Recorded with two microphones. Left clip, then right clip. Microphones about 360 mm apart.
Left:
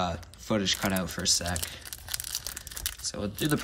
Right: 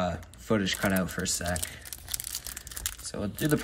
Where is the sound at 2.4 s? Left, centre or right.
Centre.